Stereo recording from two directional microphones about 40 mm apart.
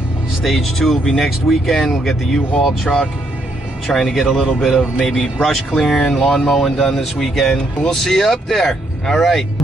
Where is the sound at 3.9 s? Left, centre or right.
Centre.